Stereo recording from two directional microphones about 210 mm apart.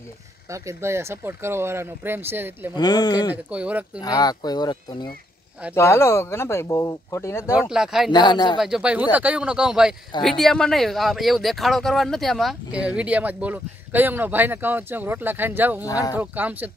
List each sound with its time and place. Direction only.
0.5 s speech: 15° right (ahead or behind)
2.7 s speech: 20° left (ahead or behind)
3.4 s speech: 5° right (ahead or behind)
4.0 s speech: 20° left (ahead or behind)
7.7 s speech: centre (ahead or behind)
8.1 s speech: 20° left (ahead or behind)
8.5 s speech: centre (ahead or behind)
15.8 s speech: 15° left (ahead or behind)
16.2 s speech: 10° right (ahead or behind)